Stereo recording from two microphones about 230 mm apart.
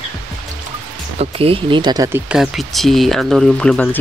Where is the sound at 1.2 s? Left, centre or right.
Right.